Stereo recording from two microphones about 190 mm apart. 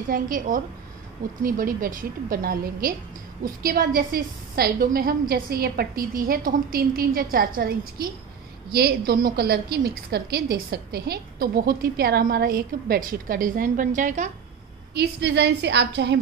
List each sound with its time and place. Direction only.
0.1 s a woman's voice: 45° right (ahead or behind)
15.0 s a woman's voice: 65° right (ahead or behind)